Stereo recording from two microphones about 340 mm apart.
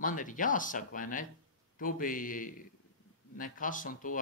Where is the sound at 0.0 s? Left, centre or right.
Left.